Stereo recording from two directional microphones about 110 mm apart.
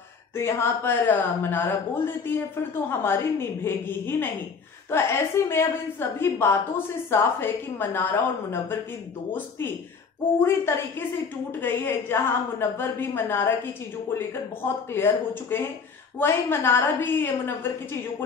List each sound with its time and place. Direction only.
0.4 s speech: 25° left (ahead or behind)
10.4 s speech: 20° left (ahead or behind)